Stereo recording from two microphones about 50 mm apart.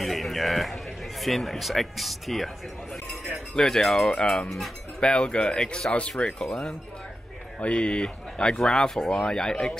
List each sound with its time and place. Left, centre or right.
0.0 s a sound: centre
1.2 s speech: centre
4.6 s speech: centre
6.4 s speech: centre
7.6 s speech: left